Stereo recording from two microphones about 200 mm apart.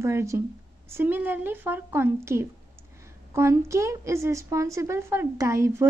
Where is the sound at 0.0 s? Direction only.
15° right (ahead or behind).